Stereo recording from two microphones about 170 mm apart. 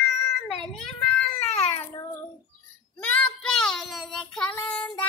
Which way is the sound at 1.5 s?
40° left (ahead or behind).